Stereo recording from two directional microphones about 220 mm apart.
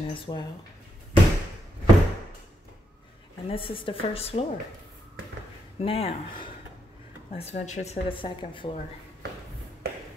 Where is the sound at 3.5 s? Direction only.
25° left (ahead or behind).